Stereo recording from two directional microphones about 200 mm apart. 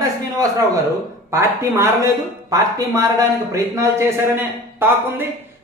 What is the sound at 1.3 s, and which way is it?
A man's voice, 15° right (ahead or behind).